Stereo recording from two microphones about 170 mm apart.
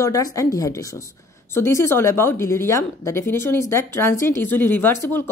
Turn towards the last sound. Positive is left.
turn(degrees=15)  # may be behind; listen again after turning